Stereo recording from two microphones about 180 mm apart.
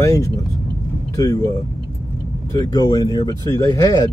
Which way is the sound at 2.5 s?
20° left (ahead or behind).